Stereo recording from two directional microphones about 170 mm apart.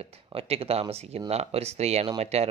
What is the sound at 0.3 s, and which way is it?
Speech, 35° right (ahead or behind).